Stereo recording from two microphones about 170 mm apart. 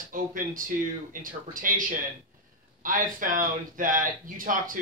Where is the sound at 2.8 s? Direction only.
55° right (ahead or behind).